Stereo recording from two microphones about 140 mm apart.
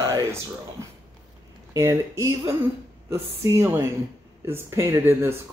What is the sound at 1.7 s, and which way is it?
A woman's voice, 20° right (ahead or behind).